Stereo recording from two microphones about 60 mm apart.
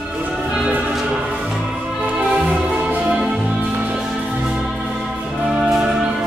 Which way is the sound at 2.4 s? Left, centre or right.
Centre.